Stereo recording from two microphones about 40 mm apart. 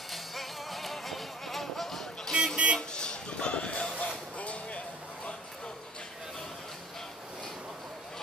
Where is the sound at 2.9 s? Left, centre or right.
Left.